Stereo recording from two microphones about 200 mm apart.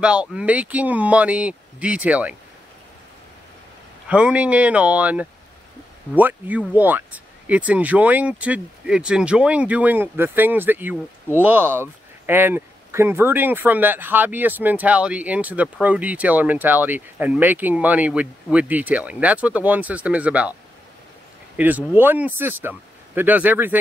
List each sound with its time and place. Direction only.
0.0 s speech: 5° right (ahead or behind)
4.1 s speech: 5° right (ahead or behind)
21.5 s speech: 10° right (ahead or behind)